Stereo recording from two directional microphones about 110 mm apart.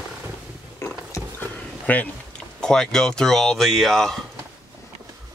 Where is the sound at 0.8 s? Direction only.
30° left (ahead or behind).